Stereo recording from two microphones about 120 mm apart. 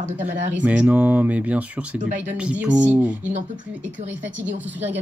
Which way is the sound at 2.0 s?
90° right.